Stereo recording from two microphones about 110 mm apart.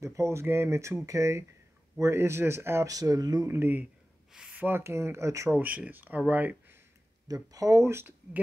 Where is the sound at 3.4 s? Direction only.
20° right (ahead or behind).